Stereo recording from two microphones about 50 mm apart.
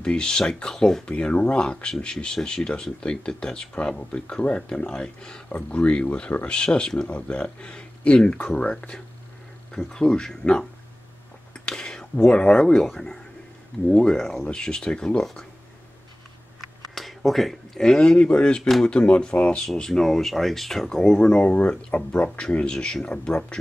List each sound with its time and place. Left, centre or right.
0.0 s speech: centre
1.1 s speech: left
5.5 s speech: left
11.5 s a sound: centre
12.8 s speech: centre
16.6 s speech: centre; by 19.6 s left
19.6 s speech: centre